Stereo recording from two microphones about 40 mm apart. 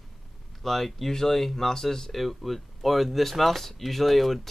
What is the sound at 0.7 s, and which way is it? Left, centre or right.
Speech, centre.